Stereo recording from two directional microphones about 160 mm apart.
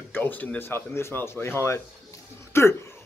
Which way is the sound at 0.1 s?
10° left (ahead or behind).